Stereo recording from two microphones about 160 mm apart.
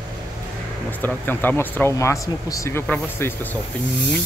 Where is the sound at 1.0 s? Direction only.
10° left (ahead or behind).